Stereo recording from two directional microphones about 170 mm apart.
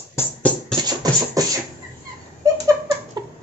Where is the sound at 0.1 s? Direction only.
10° left (ahead or behind).